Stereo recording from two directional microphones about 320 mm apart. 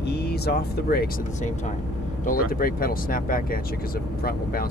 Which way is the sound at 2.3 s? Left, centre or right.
Left.